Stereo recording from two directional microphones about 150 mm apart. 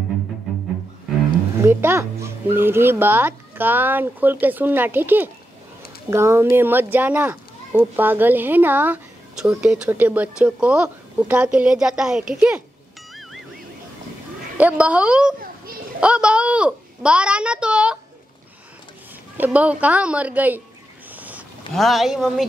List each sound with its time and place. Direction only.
1.6 s a child's voice: 15° right (ahead or behind)
14.6 s a child's voice: 10° right (ahead or behind)
19.3 s a child's voice: 10° right (ahead or behind)
21.2 s a sound: 10° right (ahead or behind)
21.7 s speech: centre (ahead or behind)